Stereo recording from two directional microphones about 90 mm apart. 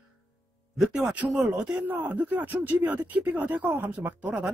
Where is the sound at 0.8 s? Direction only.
5° right (ahead or behind).